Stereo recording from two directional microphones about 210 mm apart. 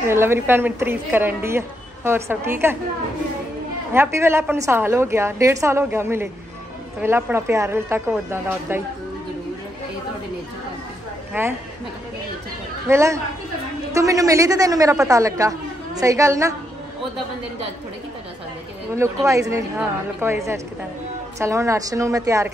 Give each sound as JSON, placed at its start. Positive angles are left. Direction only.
{"t": 0.1, "sound": "a woman's voice", "side_deg": -10}
{"t": 3.9, "sound": "a woman's voice", "side_deg": -10}
{"t": 11.3, "sound": "a woman's voice", "side_deg": -10}
{"t": 12.8, "sound": "a woman's voice", "side_deg": -15}
{"t": 18.9, "sound": "a woman's voice", "side_deg": -15}